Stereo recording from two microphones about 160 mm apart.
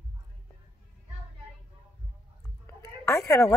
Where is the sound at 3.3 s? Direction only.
20° left (ahead or behind).